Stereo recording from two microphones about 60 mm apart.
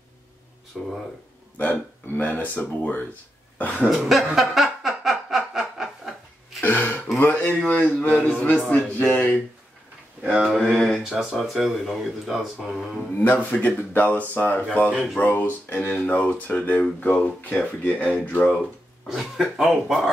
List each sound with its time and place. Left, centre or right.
0.7 s speech: centre
1.6 s speech: left
3.5 s cough: left
3.9 s speech: centre
4.4 s snicker: centre
6.6 s speech: left
8.2 s a man's voice: centre
8.6 s speech: left
10.2 s speech: right
10.7 s a man's voice: centre
11.1 s speech: centre
12.5 s a sound: centre
13.2 s speech: left
19.0 s speech: centre